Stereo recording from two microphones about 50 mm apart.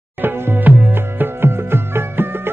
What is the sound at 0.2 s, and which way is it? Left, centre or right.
Music, right.